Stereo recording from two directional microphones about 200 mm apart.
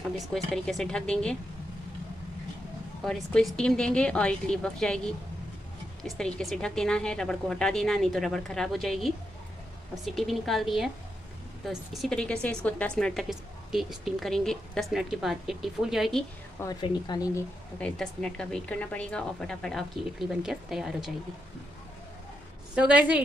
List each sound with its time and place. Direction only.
0.3 s a woman's voice: centre (ahead or behind)
3.0 s a woman's voice: centre (ahead or behind)
16.5 s speech: 20° left (ahead or behind)
17.7 s a woman's voice: 5° left (ahead or behind)
22.8 s a woman's voice: 5° right (ahead or behind)